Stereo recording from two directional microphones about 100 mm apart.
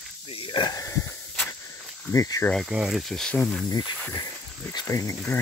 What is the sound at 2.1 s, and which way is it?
Speech, 35° left (ahead or behind).